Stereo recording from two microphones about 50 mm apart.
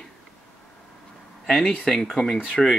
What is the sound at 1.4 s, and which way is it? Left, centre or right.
Speech, centre.